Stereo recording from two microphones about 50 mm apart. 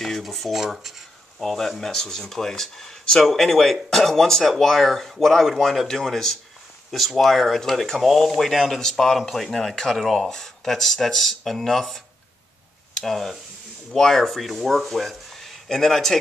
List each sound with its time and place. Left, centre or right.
0.0 s speech: centre